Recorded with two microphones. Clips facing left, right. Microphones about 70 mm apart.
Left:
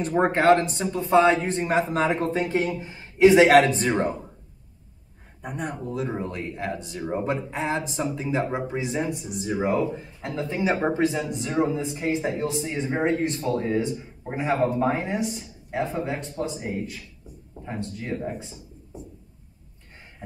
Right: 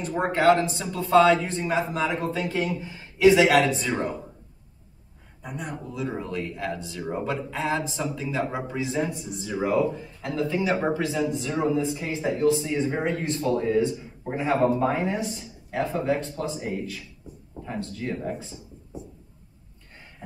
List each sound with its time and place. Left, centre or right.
0.1 s speech: left
1.7 s speech: left
2.3 s speech: left
5.4 s speech: left
5.9 s speech: left
16.3 s speech: left